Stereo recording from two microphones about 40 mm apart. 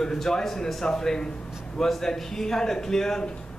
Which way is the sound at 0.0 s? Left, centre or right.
Centre.